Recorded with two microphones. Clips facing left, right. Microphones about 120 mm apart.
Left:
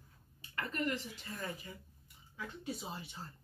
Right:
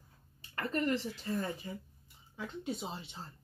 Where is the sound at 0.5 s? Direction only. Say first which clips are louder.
Right 5 dB; 35° right (ahead or behind).